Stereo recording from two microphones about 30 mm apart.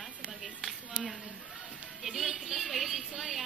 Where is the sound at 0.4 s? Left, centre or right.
Centre.